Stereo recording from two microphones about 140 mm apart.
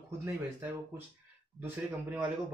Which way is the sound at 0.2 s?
15° right (ahead or behind).